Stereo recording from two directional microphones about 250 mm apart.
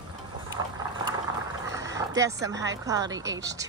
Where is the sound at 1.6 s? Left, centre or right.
Centre.